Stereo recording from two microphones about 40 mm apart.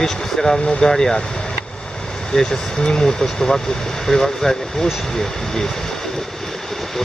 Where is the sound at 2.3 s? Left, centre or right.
Centre.